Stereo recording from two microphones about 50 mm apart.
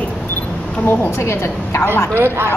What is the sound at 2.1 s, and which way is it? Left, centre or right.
Speech, right.